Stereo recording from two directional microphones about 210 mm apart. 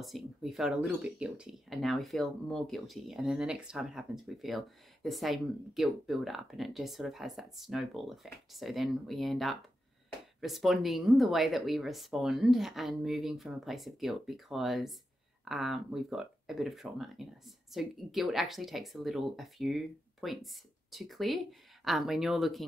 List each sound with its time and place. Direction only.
0.0 s speech: centre (ahead or behind)